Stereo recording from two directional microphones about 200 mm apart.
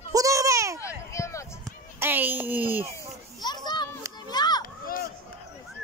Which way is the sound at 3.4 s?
20° left (ahead or behind).